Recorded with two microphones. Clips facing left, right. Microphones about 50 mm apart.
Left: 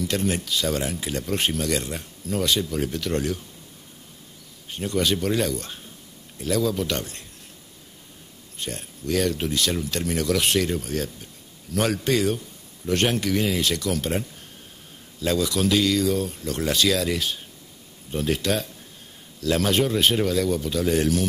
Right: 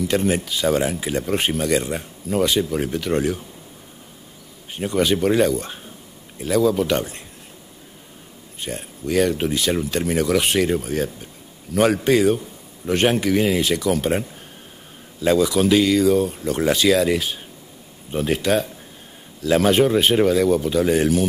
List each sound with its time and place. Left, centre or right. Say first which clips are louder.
0.0 s speech: right 5 dB; centre
4.7 s speech: right 4 dB; centre
8.5 s speech: right 3 dB; centre